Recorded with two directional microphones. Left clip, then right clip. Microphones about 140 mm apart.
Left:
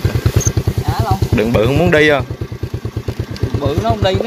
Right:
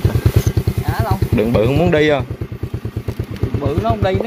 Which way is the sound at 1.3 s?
5° right (ahead or behind).